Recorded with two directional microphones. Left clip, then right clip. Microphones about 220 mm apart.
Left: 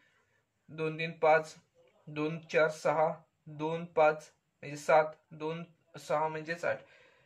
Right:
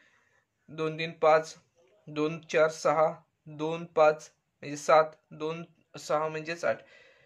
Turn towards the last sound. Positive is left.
turn(degrees=-45)  # may be behind; listen again after turning